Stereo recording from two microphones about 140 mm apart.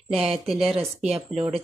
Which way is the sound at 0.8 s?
50° right (ahead or behind).